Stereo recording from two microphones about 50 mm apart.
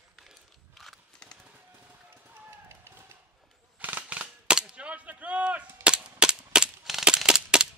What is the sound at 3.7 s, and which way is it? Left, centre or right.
Scissors, right.